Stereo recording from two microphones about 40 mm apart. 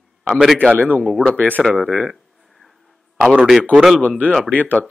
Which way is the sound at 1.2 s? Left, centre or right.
Left.